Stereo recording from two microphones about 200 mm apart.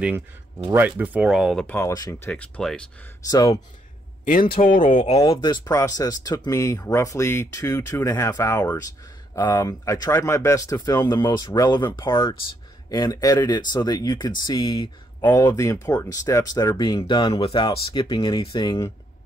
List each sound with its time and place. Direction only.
0.7 s speech: 10° right (ahead or behind)
3.3 s speech: 20° left (ahead or behind)
4.2 s a man's voice: 45° left (ahead or behind)
5.2 s speech: 20° left (ahead or behind)